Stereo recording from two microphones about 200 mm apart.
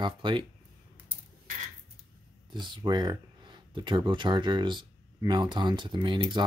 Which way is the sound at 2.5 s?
20° right (ahead or behind).